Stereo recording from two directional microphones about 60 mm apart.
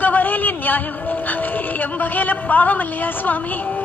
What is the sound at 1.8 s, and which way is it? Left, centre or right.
A woman's voice, left.